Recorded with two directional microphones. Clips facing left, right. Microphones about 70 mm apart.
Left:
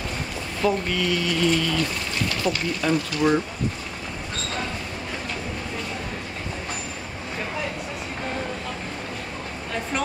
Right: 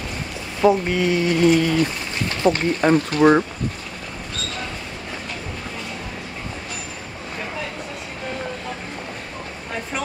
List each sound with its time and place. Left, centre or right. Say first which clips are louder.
0.6 s speech: right 6 dB; right
1.5 s speech: right 6 dB; right
1.8 s speech: right 4 dB; right